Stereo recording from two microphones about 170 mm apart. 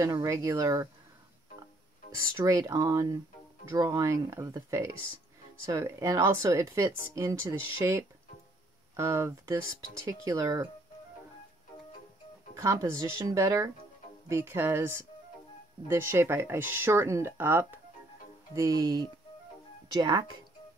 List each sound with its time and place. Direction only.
0.0 s speech: 20° right (ahead or behind)
2.3 s speech: 20° right (ahead or behind)
12.5 s speech: 15° right (ahead or behind)